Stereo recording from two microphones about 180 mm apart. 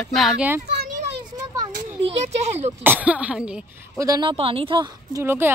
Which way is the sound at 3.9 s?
20° right (ahead or behind).